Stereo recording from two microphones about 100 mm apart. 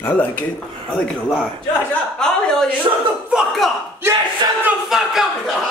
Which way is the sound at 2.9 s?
40° right (ahead or behind).